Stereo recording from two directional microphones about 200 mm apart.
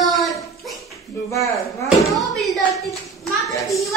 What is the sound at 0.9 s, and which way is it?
Speech, 15° left (ahead or behind).